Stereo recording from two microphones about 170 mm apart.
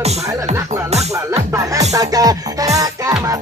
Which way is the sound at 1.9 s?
20° right (ahead or behind).